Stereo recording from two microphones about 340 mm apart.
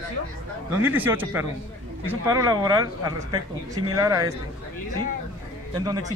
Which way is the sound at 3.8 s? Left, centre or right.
Centre.